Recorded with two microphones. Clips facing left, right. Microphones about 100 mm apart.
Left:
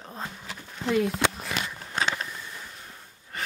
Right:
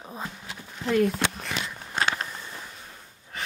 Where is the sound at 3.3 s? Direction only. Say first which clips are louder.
Left 1 dB; centre (ahead or behind).